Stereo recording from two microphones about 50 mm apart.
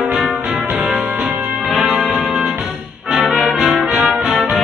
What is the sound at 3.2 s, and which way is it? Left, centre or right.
Brass instrument, centre.